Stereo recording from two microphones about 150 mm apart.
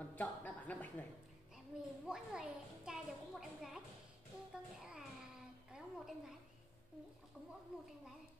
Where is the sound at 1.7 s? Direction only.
5° right (ahead or behind).